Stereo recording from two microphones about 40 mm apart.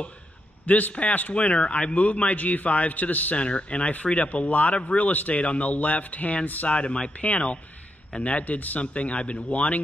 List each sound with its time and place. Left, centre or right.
0.7 s a man's voice: left
3.4 s a man's voice: left
6.7 s a man's voice: left
8.9 s a man's voice: left